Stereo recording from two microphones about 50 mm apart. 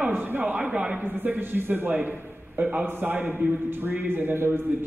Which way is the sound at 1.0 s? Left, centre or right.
Right.